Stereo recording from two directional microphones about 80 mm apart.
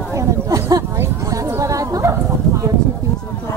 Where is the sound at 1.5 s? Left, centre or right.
Right.